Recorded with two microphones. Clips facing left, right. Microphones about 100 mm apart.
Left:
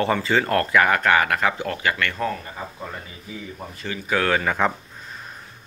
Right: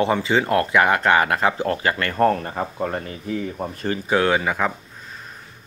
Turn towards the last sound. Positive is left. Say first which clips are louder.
# left 1 dB
turn(degrees=-5)  # may be behind; listen again after turning